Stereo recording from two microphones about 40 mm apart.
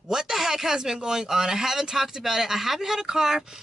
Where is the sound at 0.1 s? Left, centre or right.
Centre.